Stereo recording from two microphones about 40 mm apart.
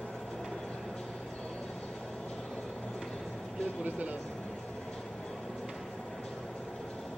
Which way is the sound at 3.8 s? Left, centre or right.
Right.